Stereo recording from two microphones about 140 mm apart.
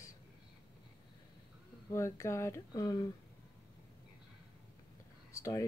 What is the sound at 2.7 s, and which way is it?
Speech, 30° left (ahead or behind).